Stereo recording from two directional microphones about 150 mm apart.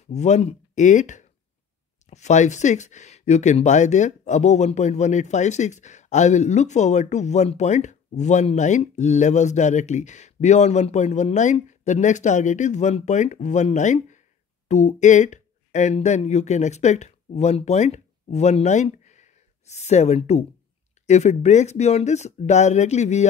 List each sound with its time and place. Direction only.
0.1 s speech: 50° left (ahead or behind)